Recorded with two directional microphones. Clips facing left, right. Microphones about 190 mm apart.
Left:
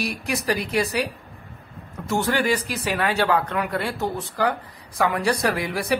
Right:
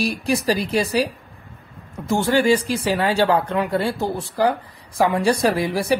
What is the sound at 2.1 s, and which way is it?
Speech, 30° right (ahead or behind).